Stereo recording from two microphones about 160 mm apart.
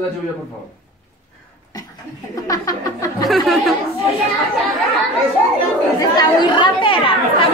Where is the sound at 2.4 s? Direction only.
20° left (ahead or behind).